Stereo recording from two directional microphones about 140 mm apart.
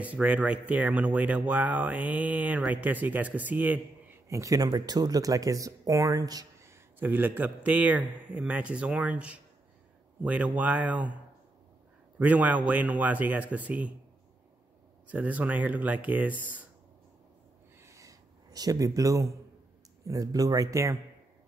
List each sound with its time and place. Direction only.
0.0 s speech: 10° right (ahead or behind)
4.3 s speech: 25° right (ahead or behind)
12.2 s speech: 10° right (ahead or behind)
15.0 s speech: 10° right (ahead or behind)
17.8 s a sound: 25° right (ahead or behind)
20.1 s speech: 25° right (ahead or behind)